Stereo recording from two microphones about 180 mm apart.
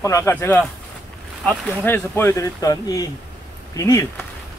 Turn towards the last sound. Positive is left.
turn(degrees=15)  # may be behind; listen again after turning